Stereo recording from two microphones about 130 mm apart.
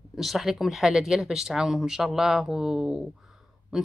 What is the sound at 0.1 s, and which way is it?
Speech, centre (ahead or behind).